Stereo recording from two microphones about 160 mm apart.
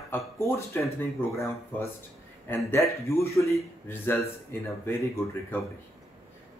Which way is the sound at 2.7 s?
20° left (ahead or behind).